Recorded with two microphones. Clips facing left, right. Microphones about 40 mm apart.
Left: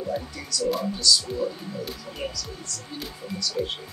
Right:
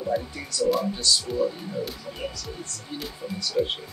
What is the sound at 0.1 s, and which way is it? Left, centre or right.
Speech, centre.